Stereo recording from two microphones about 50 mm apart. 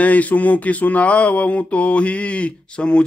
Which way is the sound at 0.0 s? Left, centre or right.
Left.